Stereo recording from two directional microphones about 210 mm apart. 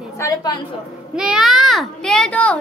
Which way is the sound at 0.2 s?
15° left (ahead or behind).